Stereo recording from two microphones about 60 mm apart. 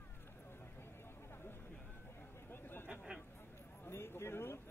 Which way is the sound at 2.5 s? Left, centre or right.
Left.